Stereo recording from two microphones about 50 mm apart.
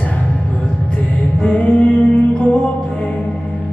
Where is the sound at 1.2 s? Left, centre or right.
Left.